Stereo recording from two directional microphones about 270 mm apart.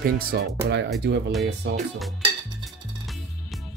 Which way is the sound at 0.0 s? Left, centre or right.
Right.